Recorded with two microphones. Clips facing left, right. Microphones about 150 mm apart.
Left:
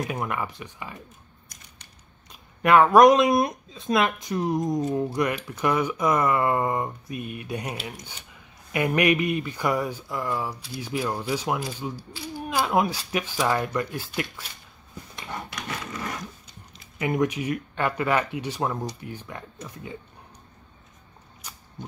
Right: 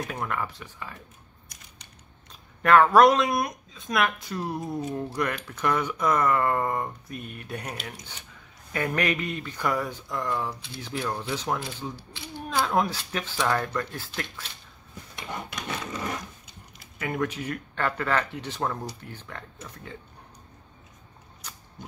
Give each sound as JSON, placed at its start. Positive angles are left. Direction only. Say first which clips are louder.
{"t": 0.1, "sound": "speech", "louder": "left 2 dB", "side_deg": 15}
{"t": 2.6, "sound": "speech", "louder": "left 2 dB", "side_deg": 10}
{"t": 17.0, "sound": "speech", "louder": "left 5 dB", "side_deg": 15}